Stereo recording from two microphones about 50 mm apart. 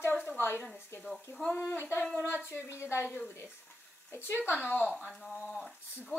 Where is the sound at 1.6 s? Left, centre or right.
Left.